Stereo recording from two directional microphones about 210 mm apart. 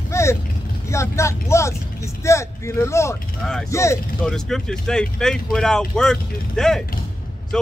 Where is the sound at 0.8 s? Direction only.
15° left (ahead or behind).